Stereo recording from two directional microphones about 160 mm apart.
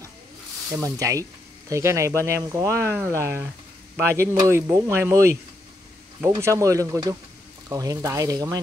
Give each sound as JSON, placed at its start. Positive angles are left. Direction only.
{"t": 0.8, "sound": "speech", "side_deg": -20}
{"t": 6.4, "sound": "speech", "side_deg": -20}